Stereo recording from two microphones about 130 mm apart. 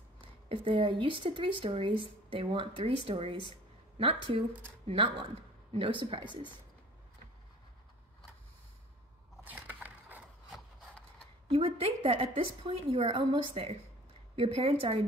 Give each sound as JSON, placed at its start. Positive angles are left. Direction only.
{"t": 0.5, "sound": "a woman's voice", "side_deg": -40}
{"t": 9.4, "sound": "crushing", "side_deg": -15}
{"t": 11.4, "sound": "a woman's voice", "side_deg": -45}